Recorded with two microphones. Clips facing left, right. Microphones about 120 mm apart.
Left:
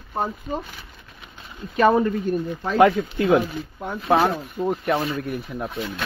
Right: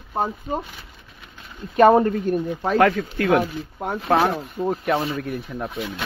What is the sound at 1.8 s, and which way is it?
Speech, 40° right (ahead or behind).